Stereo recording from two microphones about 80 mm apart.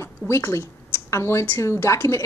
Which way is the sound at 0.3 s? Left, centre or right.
Left.